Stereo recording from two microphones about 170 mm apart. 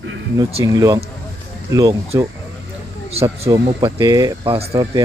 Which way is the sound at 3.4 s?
20° right (ahead or behind).